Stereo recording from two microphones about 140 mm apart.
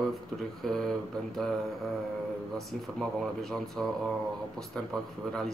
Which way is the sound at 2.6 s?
Centre (ahead or behind).